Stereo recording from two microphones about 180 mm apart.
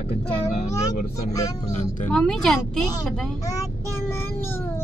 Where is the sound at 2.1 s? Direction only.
Centre (ahead or behind).